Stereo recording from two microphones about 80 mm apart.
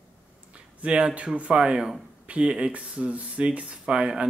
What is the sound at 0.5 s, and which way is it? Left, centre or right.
Speech, centre.